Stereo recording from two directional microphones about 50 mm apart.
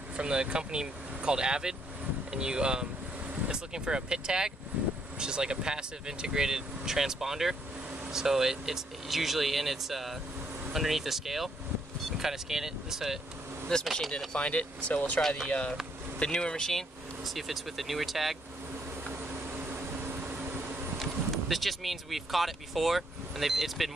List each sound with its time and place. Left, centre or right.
0.2 s speech: centre
13.7 s speech: centre
14.3 s speech: left
17.2 s speech: centre
19.7 s vehicle: right
21.0 s speech: centre